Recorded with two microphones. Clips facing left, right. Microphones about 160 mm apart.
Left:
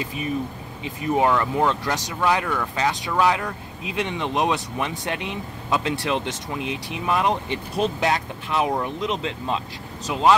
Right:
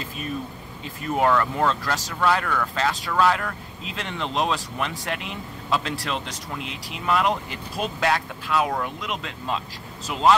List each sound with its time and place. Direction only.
0.8 s speech: 15° left (ahead or behind)